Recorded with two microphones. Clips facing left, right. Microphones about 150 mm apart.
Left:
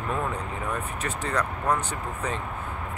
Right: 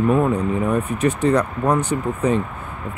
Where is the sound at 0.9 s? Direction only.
15° right (ahead or behind).